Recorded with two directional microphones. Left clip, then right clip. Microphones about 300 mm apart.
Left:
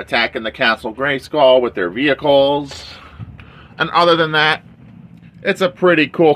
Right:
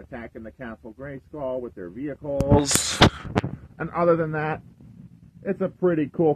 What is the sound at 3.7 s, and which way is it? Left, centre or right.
Speech, centre.